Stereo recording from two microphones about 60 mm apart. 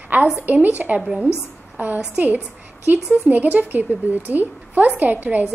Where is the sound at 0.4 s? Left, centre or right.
Right.